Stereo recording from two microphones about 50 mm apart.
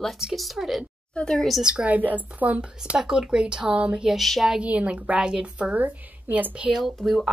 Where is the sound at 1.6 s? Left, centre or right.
Centre.